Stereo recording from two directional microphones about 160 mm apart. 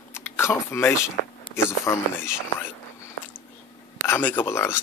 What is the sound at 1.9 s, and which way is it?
Speech, 20° left (ahead or behind).